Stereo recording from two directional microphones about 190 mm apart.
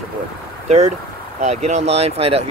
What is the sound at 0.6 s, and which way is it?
Speech, 35° right (ahead or behind).